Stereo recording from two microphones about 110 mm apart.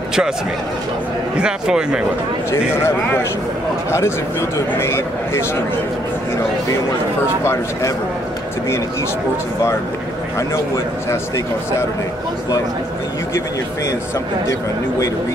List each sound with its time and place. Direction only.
1.3 s speech: 5° right (ahead or behind)
2.7 s a man's voice: 20° left (ahead or behind)